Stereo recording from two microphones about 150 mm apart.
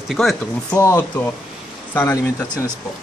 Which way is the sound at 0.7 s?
20° left (ahead or behind).